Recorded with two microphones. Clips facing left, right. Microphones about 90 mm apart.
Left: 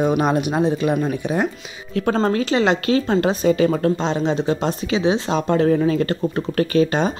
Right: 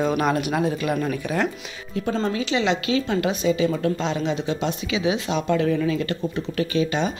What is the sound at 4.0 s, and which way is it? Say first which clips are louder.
Speech: left 4 dB; 35° left (ahead or behind).